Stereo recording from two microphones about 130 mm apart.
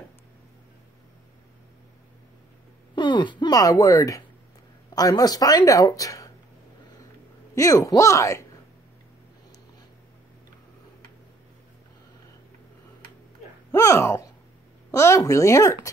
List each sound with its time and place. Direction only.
3.0 s speech: 35° left (ahead or behind)
7.5 s speech: 25° left (ahead or behind)
13.7 s speech: 25° left (ahead or behind)